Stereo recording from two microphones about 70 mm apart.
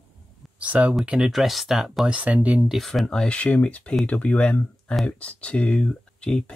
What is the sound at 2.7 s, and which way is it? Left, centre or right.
Speech, centre.